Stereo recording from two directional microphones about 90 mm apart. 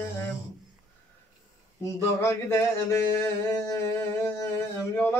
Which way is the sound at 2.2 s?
30° left (ahead or behind).